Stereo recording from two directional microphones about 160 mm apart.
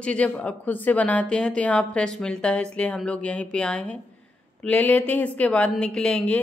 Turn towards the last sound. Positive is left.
turn(degrees=5)  # may be behind; listen again after turning